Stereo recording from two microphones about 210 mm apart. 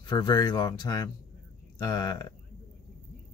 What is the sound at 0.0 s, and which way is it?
Speech, 20° left (ahead or behind).